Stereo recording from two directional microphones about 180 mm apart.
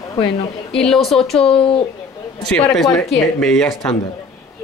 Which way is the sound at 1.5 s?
30° left (ahead or behind).